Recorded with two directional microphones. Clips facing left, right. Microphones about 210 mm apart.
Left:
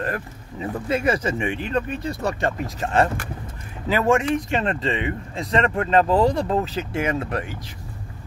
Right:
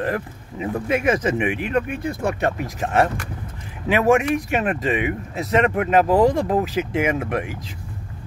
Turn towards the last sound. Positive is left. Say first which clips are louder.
# right 2 dB
turn(degrees=-10)  # may be behind; listen again after turning